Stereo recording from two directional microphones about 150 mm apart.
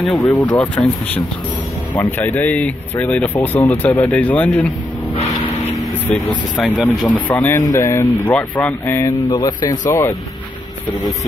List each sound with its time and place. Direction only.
0.1 s speech: 10° left (ahead or behind)
6.1 s speech: 5° left (ahead or behind); by 10.1 s 20° left (ahead or behind)